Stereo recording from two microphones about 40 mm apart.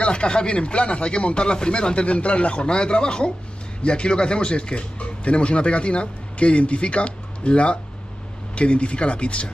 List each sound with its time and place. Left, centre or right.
0.0 s speech: left